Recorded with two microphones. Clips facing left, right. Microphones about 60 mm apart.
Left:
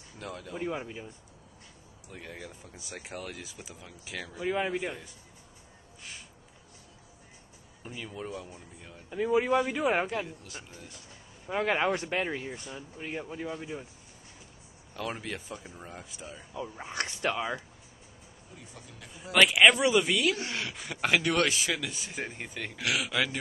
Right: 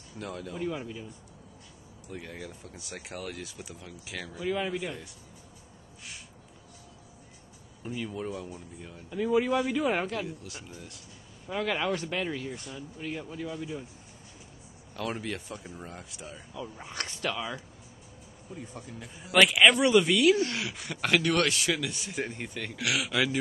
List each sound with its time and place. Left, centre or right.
0.2 s speech: centre
0.7 s speech: left
2.0 s speech: centre
4.4 s speech: left
4.6 s speech: centre
7.8 s speech: centre
9.1 s speech: centre
10.2 s speech: centre
11.5 s speech: left
15.0 s speech: centre
16.7 s speech: left
18.7 s speech: right
19.3 s speech: centre